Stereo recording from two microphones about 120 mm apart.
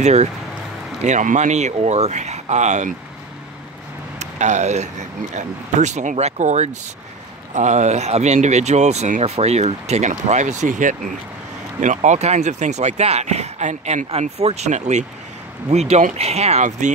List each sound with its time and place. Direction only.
0.0 s speech: 70° right (ahead or behind)
1.0 s speech: 90° right
4.2 s speech: 80° right
15.7 s speech: 65° right (ahead or behind); by 16.9 s 80° right